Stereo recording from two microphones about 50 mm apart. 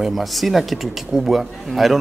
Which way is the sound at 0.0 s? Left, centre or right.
Centre.